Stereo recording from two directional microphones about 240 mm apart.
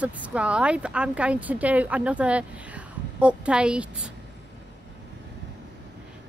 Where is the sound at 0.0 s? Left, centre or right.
Centre.